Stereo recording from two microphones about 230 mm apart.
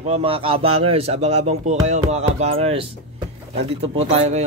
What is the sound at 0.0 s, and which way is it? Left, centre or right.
Speech, right.